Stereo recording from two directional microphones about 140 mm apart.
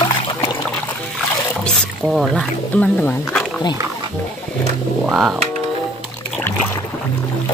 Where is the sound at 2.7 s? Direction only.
10° left (ahead or behind).